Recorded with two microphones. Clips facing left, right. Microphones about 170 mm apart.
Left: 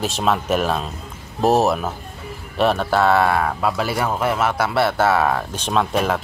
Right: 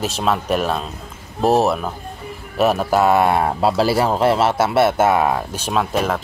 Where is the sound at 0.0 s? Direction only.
Centre (ahead or behind).